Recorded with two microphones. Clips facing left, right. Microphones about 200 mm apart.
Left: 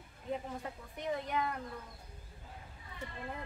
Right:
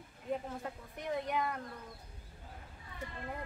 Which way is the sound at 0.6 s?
Centre (ahead or behind).